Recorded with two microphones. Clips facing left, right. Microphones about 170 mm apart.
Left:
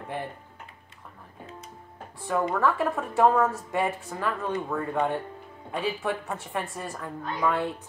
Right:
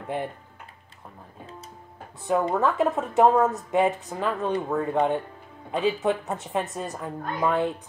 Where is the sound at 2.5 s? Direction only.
20° right (ahead or behind).